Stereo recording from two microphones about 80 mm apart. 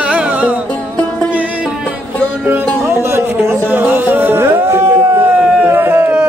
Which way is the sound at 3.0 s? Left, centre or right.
Right.